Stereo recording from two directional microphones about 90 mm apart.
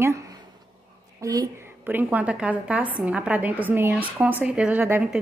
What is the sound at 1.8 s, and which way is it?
A woman's voice, 20° right (ahead or behind).